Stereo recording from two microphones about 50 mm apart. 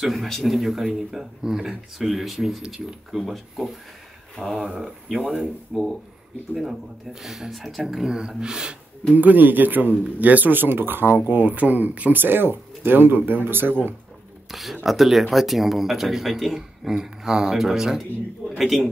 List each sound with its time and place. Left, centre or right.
0.0 s speech: centre
5.2 s speech: right
6.5 s speech: centre
9.1 s speech: right
12.2 s speech: right
14.5 s speech: centre